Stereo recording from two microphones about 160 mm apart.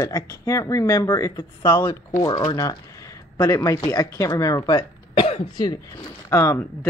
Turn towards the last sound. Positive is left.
turn(degrees=20)  # may be behind; listen again after turning